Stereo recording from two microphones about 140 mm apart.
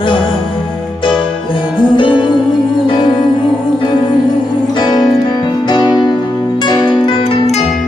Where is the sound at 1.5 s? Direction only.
35° left (ahead or behind).